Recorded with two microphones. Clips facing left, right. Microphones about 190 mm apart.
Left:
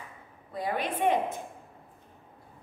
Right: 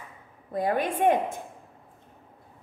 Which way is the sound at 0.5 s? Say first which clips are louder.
Right 5 dB; 50° right (ahead or behind).